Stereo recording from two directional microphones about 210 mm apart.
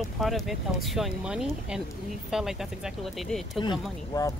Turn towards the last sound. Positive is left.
turn(degrees=20)  # may be behind; listen again after turning